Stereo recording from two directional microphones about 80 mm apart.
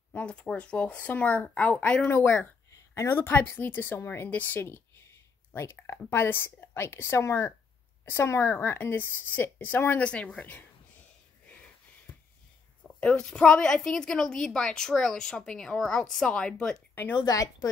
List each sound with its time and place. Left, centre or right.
0.1 s a woman's voice: centre
10.0 s a woman's voice: centre
12.8 s a woman's voice: centre
16.9 s speech: left
17.2 s speech: left